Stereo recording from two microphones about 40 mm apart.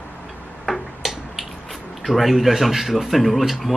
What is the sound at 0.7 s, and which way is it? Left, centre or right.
Tick-tock, centre.